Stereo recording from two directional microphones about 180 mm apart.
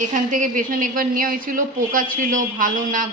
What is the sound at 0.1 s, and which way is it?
A woman's voice, 45° right (ahead or behind).